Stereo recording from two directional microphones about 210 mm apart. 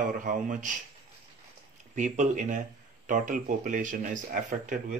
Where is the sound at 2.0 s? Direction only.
35° right (ahead or behind).